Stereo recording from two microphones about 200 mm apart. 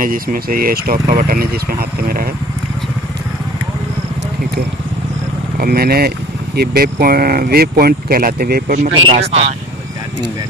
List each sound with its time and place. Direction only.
0.0 s speech: 45° right (ahead or behind)
5.6 s speech: 50° right (ahead or behind); by 9.5 s 30° right (ahead or behind)